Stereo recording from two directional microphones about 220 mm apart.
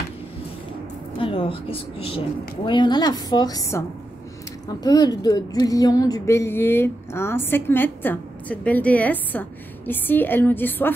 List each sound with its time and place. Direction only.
1.1 s a woman's voice: 25° left (ahead or behind)